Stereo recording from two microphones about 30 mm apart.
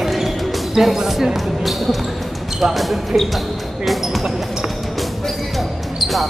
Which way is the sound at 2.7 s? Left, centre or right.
Centre.